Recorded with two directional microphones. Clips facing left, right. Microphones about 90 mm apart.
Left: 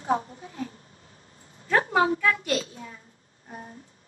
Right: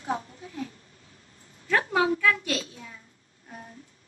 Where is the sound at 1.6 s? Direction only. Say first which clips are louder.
Left 2 dB; 25° left (ahead or behind).